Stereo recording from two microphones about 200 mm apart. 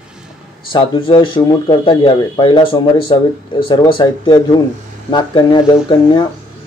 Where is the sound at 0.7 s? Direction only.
25° left (ahead or behind).